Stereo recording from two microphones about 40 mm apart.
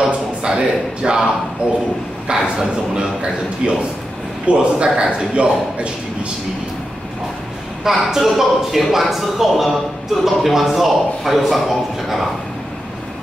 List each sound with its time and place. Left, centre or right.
0.4 s a man's voice: right
7.8 s a man's voice: centre